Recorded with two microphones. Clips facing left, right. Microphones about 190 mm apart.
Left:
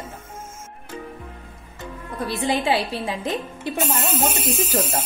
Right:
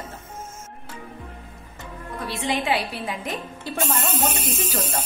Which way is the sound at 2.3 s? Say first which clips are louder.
Left 3 dB; 35° left (ahead or behind).